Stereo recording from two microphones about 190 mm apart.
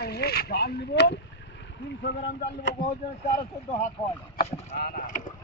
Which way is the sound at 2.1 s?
60° left (ahead or behind).